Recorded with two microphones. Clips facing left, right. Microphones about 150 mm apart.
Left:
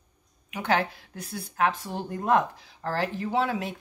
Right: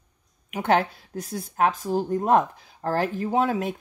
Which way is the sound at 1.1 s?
45° right (ahead or behind).